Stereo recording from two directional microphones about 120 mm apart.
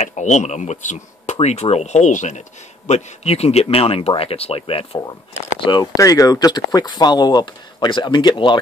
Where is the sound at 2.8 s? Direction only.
65° left (ahead or behind); by 5.9 s 40° left (ahead or behind).